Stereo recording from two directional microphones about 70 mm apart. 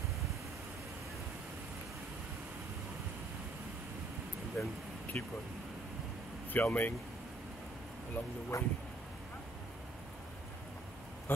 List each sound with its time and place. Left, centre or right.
4.6 s speech: centre
5.1 s speech: left
6.5 s speech: left
8.5 s speech: left
11.3 s a sound: left